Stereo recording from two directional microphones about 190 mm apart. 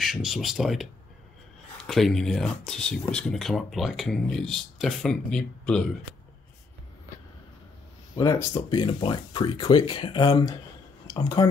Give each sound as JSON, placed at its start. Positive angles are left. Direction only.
{"t": 0.0, "sound": "speech", "side_deg": 0}
{"t": 8.2, "sound": "speech", "side_deg": 15}
{"t": 8.5, "sound": "speech", "side_deg": 25}